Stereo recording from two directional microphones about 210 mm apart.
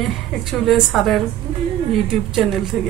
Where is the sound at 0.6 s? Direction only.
Centre (ahead or behind).